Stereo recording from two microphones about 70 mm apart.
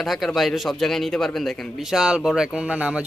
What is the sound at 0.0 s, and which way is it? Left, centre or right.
A man's voice, centre.